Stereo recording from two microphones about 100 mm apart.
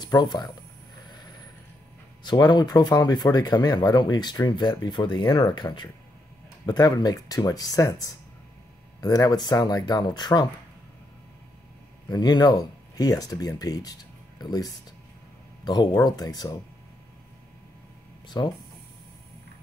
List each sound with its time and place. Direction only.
0.0 s speech: 45° left (ahead or behind)
2.2 s speech: 45° left (ahead or behind)
12.1 s speech: 40° left (ahead or behind)
18.3 s speech: 40° left (ahead or behind)